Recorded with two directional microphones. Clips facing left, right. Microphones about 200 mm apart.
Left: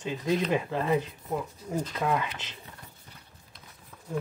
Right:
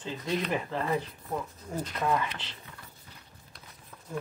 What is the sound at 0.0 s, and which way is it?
Speech, 15° left (ahead or behind).